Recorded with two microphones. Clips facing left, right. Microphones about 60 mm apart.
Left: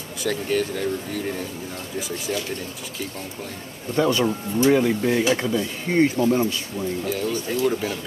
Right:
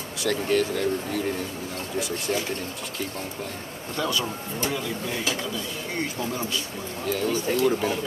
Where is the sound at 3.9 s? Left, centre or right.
Left.